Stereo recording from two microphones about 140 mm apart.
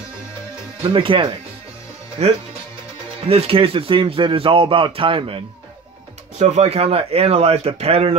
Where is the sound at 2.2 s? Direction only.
50° right (ahead or behind).